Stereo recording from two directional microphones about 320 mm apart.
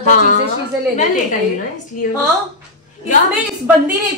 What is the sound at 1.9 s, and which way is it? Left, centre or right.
Speech, left.